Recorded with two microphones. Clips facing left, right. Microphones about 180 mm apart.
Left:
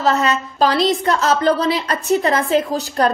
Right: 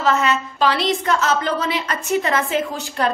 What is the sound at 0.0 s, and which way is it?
A woman's voice, 40° left (ahead or behind).